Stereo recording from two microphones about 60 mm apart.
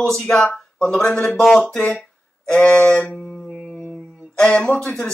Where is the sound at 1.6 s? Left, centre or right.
Left.